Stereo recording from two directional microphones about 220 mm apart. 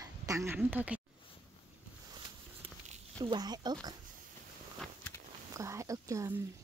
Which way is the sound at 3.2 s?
20° right (ahead or behind).